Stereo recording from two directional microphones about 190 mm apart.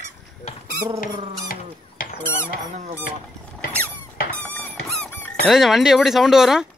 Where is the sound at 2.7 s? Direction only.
35° right (ahead or behind).